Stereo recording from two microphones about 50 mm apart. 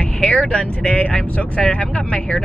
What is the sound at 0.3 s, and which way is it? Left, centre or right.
Speech, left.